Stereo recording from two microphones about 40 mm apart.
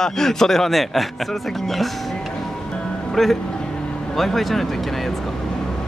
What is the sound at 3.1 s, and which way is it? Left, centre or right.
Speech, centre.